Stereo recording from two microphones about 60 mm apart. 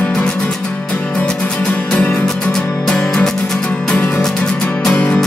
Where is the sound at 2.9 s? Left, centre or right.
Centre.